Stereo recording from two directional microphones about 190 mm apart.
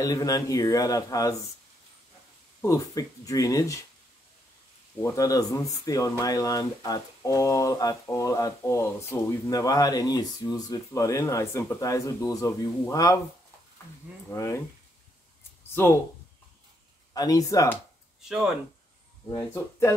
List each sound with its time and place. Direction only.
0.0 s speech: 20° left (ahead or behind)
2.6 s speech: 15° left (ahead or behind)
5.0 s speech: 20° left (ahead or behind)
14.3 s speech: 15° left (ahead or behind)
15.7 s speech: 10° left (ahead or behind)
17.1 s speech: 20° left (ahead or behind)
18.3 s speech: centre (ahead or behind)
19.2 s speech: 15° left (ahead or behind)